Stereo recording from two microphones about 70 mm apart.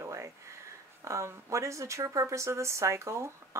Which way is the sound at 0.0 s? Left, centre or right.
Right.